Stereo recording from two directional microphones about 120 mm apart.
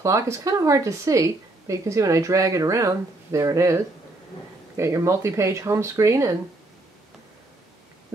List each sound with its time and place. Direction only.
0.0 s speech: 25° right (ahead or behind)